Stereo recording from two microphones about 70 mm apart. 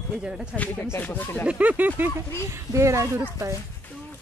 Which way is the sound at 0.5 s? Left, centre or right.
Left.